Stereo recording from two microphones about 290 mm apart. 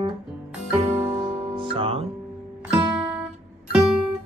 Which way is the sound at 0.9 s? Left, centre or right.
Centre.